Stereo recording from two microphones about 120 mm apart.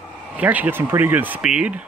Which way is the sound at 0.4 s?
15° right (ahead or behind).